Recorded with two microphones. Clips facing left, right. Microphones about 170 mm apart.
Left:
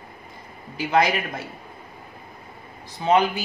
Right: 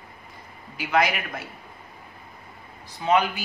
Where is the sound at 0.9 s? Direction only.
35° left (ahead or behind).